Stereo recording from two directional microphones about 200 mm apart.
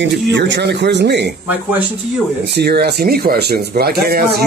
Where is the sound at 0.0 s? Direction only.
65° right (ahead or behind).